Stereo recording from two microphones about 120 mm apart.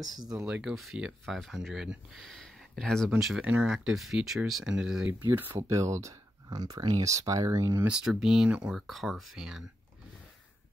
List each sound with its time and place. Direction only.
0.0 s speech: 30° right (ahead or behind)
0.3 s speech: 5° right (ahead or behind)
3.1 s speech: 5° right (ahead or behind)
5.6 s speech: 25° right (ahead or behind)
7.8 s speech: 5° right (ahead or behind)